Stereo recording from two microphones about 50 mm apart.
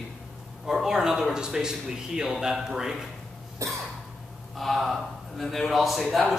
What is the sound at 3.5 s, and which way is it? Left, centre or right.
Cough, right.